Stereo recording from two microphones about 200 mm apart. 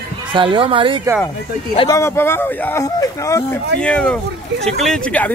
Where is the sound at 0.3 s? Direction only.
25° right (ahead or behind).